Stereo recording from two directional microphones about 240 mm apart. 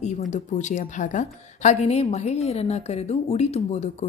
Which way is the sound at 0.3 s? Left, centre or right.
Left.